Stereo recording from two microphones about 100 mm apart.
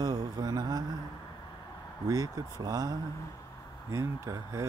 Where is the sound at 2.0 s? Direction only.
40° right (ahead or behind).